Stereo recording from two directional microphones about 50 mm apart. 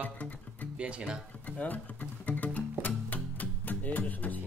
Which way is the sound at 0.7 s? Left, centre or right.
Right.